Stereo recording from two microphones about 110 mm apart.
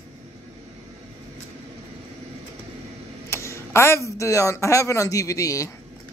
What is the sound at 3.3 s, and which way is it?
A man's voice, 25° left (ahead or behind).